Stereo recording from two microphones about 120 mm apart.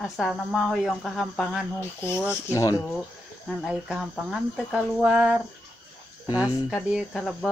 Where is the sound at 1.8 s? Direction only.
20° left (ahead or behind).